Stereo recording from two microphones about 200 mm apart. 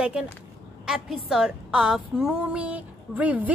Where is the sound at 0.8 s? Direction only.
Centre (ahead or behind).